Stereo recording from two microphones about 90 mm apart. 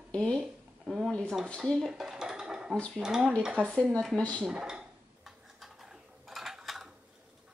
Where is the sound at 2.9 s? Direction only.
5° right (ahead or behind).